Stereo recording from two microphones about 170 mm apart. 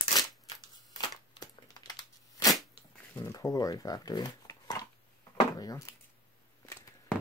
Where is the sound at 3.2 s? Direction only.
20° left (ahead or behind).